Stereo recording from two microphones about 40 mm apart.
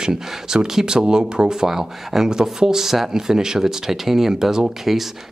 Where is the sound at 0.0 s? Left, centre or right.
Centre.